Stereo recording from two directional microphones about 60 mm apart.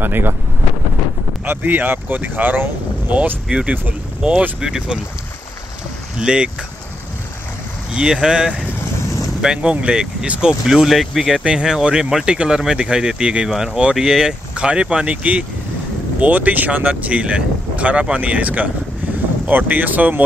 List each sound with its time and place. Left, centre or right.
0.0 s speech: right
1.4 s speech: right
3.4 s speech: centre
6.1 s speech: centre
7.9 s speech: centre
10.5 s speech: centre; by 20.2 s right